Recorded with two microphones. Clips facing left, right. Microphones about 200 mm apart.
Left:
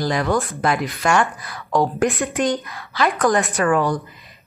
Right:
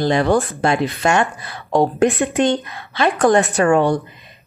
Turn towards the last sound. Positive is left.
turn(degrees=-30)  # may be behind; listen again after turning